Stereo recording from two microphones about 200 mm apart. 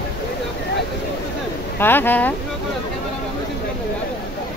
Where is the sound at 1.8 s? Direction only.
10° left (ahead or behind).